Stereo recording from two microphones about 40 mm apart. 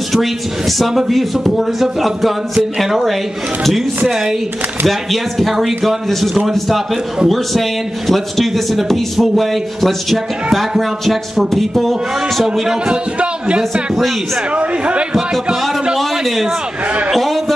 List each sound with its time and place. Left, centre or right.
0.1 s a man's voice: centre
4.8 s a man's voice: centre
8.1 s a man's voice: centre
12.8 s a man's voice: right
16.0 s a sound: centre